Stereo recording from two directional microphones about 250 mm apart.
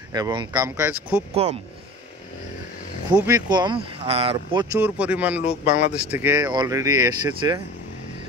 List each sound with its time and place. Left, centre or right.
0.1 s speech: centre
1.3 s speech: right
3.3 s speech: centre
4.7 s speech: centre
5.4 s speech: left
5.9 s speech: centre